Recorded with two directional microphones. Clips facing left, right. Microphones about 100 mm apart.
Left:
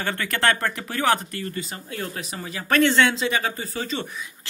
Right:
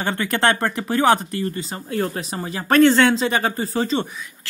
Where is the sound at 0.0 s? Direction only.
25° right (ahead or behind).